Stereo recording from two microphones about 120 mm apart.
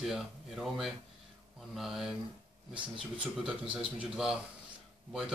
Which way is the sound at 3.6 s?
45° right (ahead or behind).